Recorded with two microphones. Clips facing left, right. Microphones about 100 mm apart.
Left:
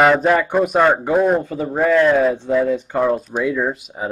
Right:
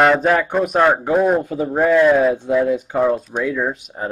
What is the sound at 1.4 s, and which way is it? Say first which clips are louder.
Speech: right 1 dB; 10° right (ahead or behind).